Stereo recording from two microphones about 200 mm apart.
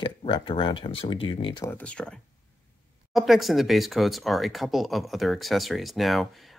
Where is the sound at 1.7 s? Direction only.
5° left (ahead or behind).